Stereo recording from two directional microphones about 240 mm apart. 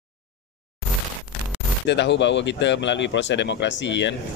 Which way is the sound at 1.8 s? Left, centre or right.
Left.